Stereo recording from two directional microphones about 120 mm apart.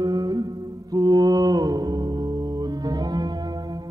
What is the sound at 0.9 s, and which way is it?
Mantra, 30° right (ahead or behind).